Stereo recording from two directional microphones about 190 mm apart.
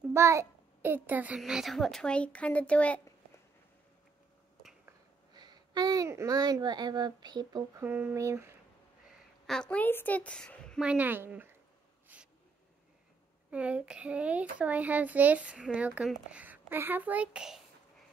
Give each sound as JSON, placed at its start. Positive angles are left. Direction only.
{"t": 0.1, "sound": "a child's voice", "side_deg": -15}
{"t": 5.3, "sound": "speech", "side_deg": -20}
{"t": 7.8, "sound": "speech", "side_deg": -10}
{"t": 9.5, "sound": "a woman's voice", "side_deg": 5}
{"t": 10.9, "sound": "speech", "side_deg": -10}
{"t": 12.1, "sound": "a sound", "side_deg": -10}
{"t": 13.5, "sound": "speech", "side_deg": -5}